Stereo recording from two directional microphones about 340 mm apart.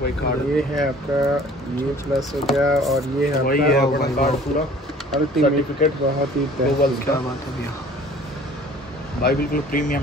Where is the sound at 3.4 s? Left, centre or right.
Left.